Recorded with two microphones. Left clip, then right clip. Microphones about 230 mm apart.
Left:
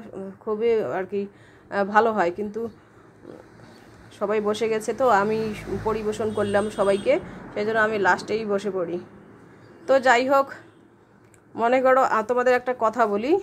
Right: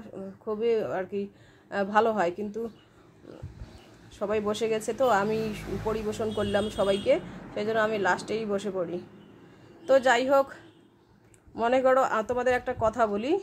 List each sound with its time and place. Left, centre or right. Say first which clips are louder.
0.0 s speech: left 5 dB; centre
4.2 s speech: left 5 dB; centre